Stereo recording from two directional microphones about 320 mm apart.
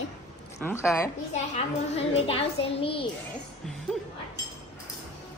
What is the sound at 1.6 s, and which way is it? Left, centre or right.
A child's voice, centre.